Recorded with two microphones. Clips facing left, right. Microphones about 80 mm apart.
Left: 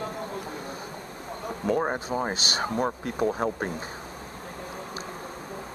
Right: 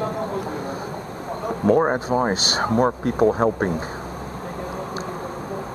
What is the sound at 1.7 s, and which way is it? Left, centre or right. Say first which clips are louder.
Speech: right 8 dB; right.